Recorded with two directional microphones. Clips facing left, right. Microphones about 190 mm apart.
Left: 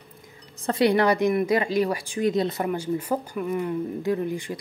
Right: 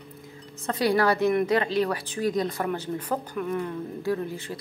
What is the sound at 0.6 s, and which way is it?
A woman's voice, 25° left (ahead or behind).